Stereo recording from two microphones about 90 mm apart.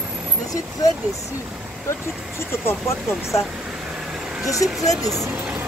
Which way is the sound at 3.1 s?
Centre (ahead or behind).